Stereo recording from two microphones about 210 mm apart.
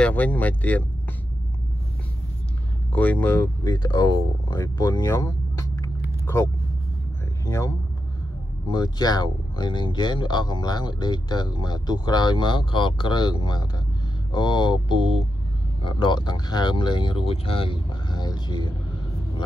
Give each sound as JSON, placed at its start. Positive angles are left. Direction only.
{"t": 0.0, "sound": "speech", "side_deg": 5}
{"t": 2.9, "sound": "speech", "side_deg": 5}
{"t": 7.4, "sound": "speech", "side_deg": 15}
{"t": 8.7, "sound": "speech", "side_deg": 20}